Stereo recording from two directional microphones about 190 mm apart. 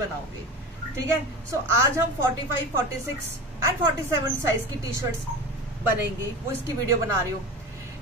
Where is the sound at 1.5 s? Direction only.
15° right (ahead or behind).